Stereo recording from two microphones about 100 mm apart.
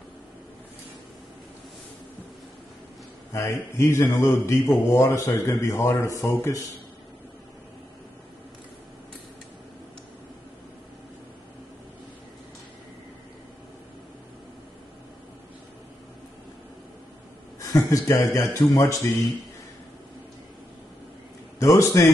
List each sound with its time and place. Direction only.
3.3 s a man's voice: 30° left (ahead or behind)
17.6 s a man's voice: 35° left (ahead or behind)
21.5 s a man's voice: 30° left (ahead or behind)